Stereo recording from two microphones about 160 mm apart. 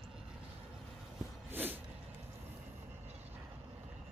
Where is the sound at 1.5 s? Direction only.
10° right (ahead or behind).